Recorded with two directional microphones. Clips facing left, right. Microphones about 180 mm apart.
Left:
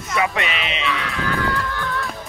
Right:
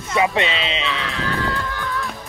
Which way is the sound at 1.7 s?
Centre (ahead or behind).